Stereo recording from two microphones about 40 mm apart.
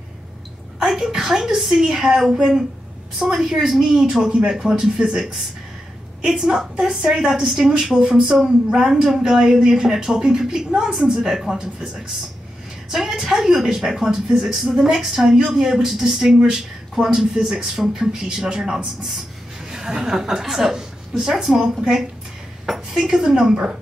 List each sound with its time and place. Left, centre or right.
0.7 s a woman's voice: centre
7.7 s a woman's voice: right